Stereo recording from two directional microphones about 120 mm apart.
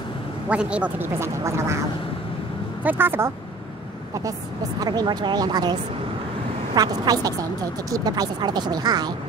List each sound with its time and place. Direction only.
0.5 s speech: 10° right (ahead or behind)
2.8 s speech: 15° right (ahead or behind)
4.7 s speech: 35° right (ahead or behind)